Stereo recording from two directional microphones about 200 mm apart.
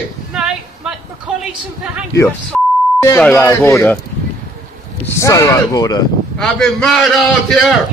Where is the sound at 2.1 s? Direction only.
15° left (ahead or behind).